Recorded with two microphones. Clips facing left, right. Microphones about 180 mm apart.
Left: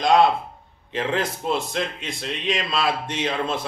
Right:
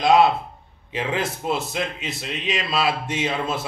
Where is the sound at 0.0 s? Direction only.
5° right (ahead or behind).